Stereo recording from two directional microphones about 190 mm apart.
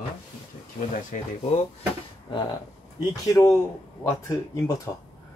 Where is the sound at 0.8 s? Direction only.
40° left (ahead or behind).